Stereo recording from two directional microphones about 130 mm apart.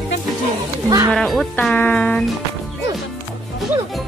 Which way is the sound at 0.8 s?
25° right (ahead or behind).